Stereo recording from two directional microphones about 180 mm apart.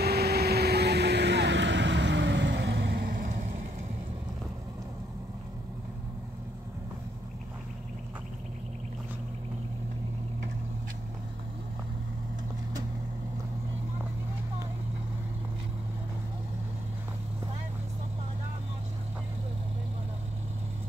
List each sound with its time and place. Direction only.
0.0 s vehicle: 65° right (ahead or behind)
3.1 s vehicle: 40° right (ahead or behind)